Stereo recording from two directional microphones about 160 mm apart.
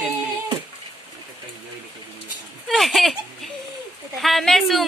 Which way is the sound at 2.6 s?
Centre (ahead or behind).